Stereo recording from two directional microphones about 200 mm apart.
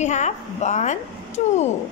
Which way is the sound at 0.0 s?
35° left (ahead or behind).